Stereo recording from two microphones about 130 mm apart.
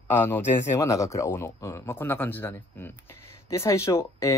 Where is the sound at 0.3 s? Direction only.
20° left (ahead or behind).